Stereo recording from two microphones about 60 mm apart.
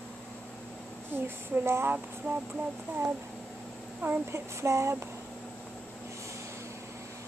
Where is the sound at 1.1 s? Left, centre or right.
Right.